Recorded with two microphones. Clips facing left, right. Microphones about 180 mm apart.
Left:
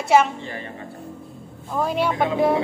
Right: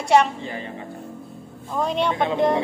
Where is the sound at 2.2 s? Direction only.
5° left (ahead or behind).